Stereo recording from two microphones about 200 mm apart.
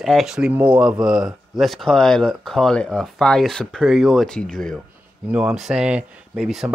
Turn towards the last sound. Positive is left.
turn(degrees=0)  # may be behind; listen again after turning